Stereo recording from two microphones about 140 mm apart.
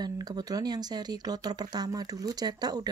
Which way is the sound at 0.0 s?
30° right (ahead or behind).